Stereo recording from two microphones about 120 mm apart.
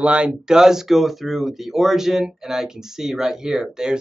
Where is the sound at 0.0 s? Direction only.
10° right (ahead or behind).